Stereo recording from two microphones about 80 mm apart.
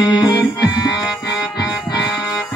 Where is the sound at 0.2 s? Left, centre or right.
Left.